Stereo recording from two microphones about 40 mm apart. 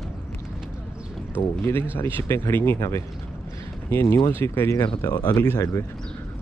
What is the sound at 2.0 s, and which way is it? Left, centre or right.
Speech, left.